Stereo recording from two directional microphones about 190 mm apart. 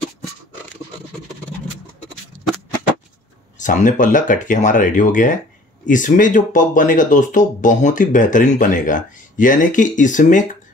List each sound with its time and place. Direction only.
3.5 s speech: 40° left (ahead or behind)